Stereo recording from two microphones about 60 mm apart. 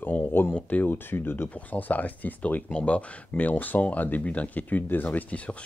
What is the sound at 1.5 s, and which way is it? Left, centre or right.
Speech, left.